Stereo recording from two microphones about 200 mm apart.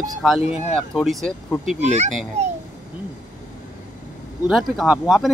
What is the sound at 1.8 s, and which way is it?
Speech, 35° right (ahead or behind).